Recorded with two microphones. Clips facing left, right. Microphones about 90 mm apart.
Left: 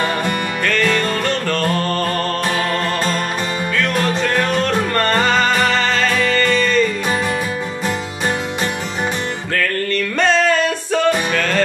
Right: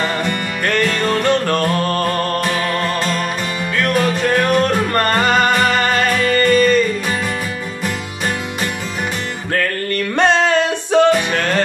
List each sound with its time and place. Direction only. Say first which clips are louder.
1.2 s music: right 3 dB; 15° right (ahead or behind)
5.8 s music: right 1 dB; 15° right (ahead or behind)
10.1 s music: right 2 dB; 20° right (ahead or behind)